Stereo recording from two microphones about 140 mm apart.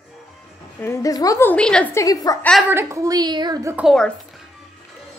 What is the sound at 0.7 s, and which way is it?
Speech, 20° left (ahead or behind).